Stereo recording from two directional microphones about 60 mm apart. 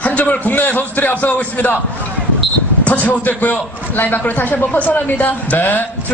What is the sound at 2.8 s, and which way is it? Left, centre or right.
A man's voice, left.